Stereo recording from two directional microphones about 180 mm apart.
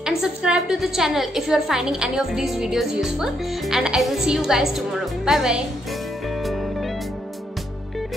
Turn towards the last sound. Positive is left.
turn(degrees=0)  # may be behind; listen again after turning